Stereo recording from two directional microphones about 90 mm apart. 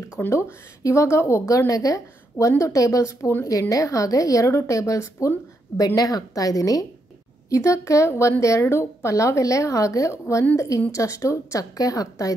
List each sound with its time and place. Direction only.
0.2 s a woman's voice: 30° left (ahead or behind)
3.4 s a woman's voice: 40° left (ahead or behind)